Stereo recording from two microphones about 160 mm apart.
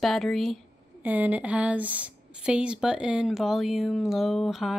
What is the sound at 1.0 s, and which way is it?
A woman's voice, 10° right (ahead or behind).